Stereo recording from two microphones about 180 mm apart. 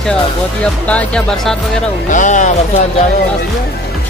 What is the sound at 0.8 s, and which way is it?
Speech, 5° left (ahead or behind).